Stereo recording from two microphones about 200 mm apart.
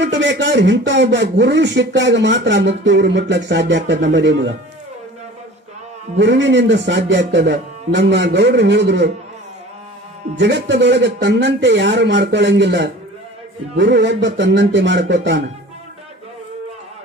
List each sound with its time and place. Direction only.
0.0 s speech: 65° right (ahead or behind)
6.1 s speech: 65° right (ahead or behind)
10.3 s speech: 60° right (ahead or behind)